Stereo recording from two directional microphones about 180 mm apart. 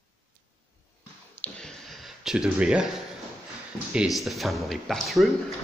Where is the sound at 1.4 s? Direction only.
5° left (ahead or behind).